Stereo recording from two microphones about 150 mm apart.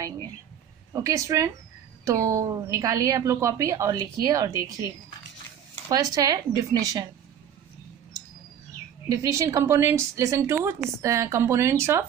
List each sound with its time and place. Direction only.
0.9 s a woman's voice: 20° right (ahead or behind)
5.9 s a woman's voice: 25° right (ahead or behind)
9.2 s a woman's voice: 20° right (ahead or behind)